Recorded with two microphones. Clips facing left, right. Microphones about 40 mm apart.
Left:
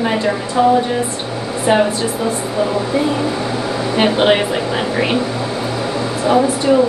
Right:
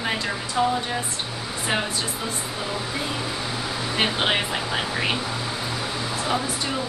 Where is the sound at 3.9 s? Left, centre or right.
Centre.